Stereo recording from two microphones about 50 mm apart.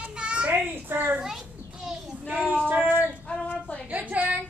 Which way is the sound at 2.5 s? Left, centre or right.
Right.